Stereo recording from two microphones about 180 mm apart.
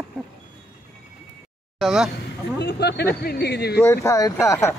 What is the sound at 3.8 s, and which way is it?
Speech, 15° left (ahead or behind).